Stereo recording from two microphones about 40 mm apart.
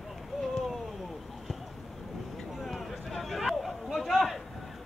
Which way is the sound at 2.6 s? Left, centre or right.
Centre.